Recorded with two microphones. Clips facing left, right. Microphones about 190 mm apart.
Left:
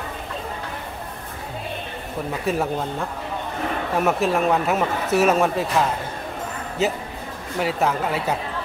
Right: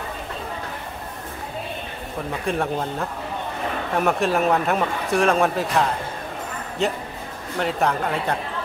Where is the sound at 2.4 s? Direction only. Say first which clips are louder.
Left 1 dB; 5° left (ahead or behind).